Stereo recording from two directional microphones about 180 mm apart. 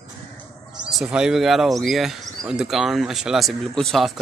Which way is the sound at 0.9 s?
5° right (ahead or behind).